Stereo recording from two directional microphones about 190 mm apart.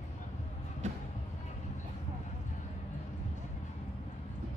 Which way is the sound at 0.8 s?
40° right (ahead or behind).